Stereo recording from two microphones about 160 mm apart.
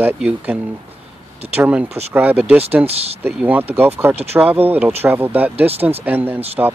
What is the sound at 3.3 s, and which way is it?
Speech, 10° right (ahead or behind).